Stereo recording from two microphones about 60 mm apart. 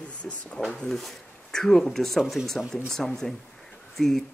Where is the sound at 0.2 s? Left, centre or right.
Centre.